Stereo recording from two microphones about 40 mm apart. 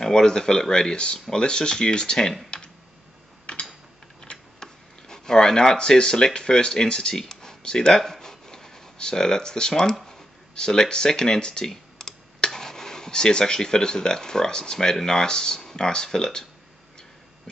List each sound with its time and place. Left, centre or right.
0.0 s speech: centre
3.5 s mechanisms: left
4.2 s speech: centre